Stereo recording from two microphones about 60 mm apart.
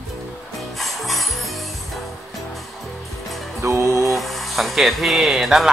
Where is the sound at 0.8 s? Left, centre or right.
Centre.